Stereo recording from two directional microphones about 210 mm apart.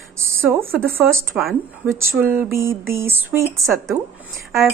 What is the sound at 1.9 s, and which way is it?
Speech, 10° right (ahead or behind).